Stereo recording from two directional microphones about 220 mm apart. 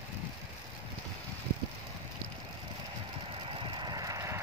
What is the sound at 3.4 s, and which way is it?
Vehicle, 25° right (ahead or behind).